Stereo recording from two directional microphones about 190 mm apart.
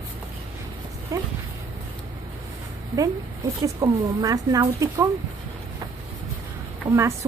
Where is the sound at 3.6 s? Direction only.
20° right (ahead or behind).